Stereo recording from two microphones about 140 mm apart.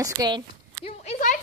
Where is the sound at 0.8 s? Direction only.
50° left (ahead or behind).